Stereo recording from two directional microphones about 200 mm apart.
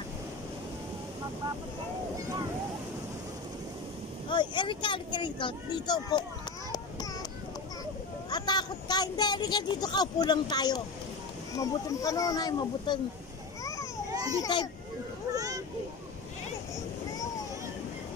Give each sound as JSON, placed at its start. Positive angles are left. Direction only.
{"t": 4.3, "sound": "a woman's voice", "side_deg": 25}
{"t": 8.3, "sound": "a woman's voice", "side_deg": 20}
{"t": 14.4, "sound": "a woman's voice", "side_deg": 20}
{"t": 15.3, "sound": "vehicle", "side_deg": -15}